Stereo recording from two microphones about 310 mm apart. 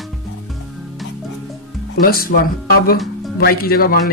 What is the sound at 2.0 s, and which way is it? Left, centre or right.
A man's voice, left.